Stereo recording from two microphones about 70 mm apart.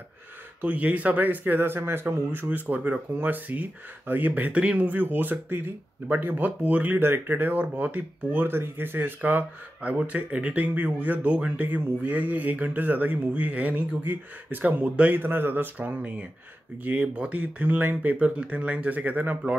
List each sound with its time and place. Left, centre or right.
0.6 s speech: right